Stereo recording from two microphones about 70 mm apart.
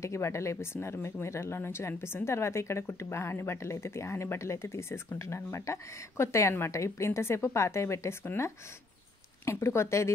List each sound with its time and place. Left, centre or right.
0.0 s a woman's voice: left